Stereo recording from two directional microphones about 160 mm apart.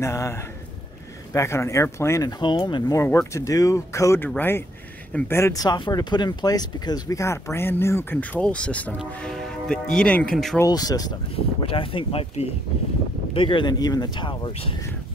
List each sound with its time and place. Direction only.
0.0 s speech: 20° left (ahead or behind)
3.0 s speech: 20° left (ahead or behind)
10.6 s speech: 25° left (ahead or behind)
11.3 s speech: 35° left (ahead or behind)